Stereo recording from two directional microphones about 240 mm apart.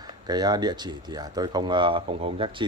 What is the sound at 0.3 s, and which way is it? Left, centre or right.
Speech, centre.